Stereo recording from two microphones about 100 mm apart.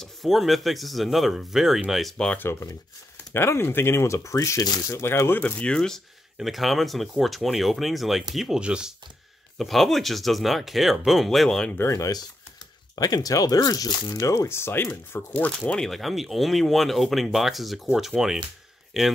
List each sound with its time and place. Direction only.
0.0 s speech: centre (ahead or behind)
3.3 s speech: 25° left (ahead or behind); by 8.9 s 10° right (ahead or behind)
9.6 s speech: centre (ahead or behind)
11.9 s speech: 35° left (ahead or behind); by 19.1 s centre (ahead or behind)